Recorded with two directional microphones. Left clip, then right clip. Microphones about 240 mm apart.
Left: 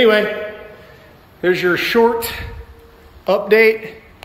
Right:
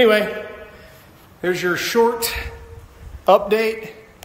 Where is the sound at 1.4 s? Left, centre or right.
Centre.